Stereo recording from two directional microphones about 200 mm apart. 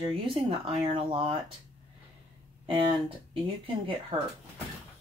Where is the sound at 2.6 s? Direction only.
25° right (ahead or behind).